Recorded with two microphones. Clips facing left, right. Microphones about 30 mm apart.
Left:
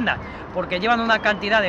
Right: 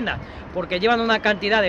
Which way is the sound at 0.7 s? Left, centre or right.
Centre.